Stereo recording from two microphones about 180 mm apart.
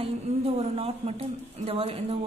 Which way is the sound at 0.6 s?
35° right (ahead or behind).